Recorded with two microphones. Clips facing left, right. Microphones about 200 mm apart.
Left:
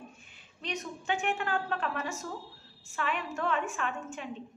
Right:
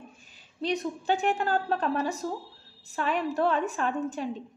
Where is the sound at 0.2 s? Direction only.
35° right (ahead or behind).